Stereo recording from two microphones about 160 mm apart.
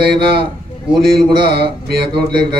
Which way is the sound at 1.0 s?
70° right (ahead or behind).